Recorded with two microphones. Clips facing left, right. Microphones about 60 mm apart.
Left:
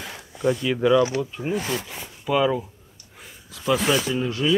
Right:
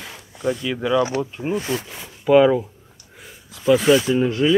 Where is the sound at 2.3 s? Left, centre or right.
Centre.